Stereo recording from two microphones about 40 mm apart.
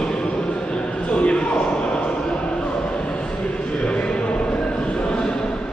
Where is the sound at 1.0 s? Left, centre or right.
Left.